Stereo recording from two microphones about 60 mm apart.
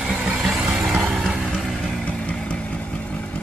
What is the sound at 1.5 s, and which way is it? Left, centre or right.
Music, centre.